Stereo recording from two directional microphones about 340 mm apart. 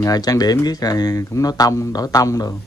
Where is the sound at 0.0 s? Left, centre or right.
Centre.